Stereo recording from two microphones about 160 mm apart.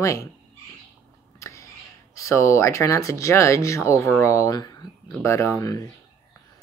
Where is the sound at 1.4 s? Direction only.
20° left (ahead or behind).